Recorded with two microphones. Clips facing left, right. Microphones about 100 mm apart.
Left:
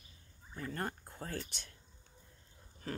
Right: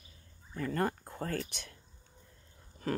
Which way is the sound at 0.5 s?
70° right (ahead or behind).